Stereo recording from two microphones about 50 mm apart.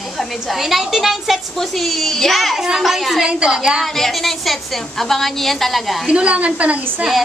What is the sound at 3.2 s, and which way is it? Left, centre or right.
Speech, centre.